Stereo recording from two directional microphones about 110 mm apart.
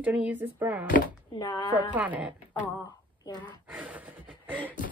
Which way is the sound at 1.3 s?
35° left (ahead or behind).